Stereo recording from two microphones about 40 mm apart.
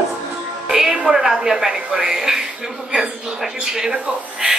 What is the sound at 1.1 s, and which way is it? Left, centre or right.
Speech, centre.